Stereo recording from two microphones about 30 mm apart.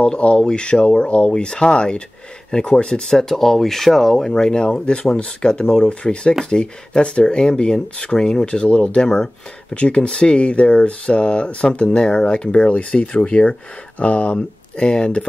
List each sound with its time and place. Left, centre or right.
0.0 s speech: left
0.4 s speech: left
0.7 s speech: left
3.1 s speech: centre
4.3 s speech: left
8.5 s speech: left
12.7 s speech: left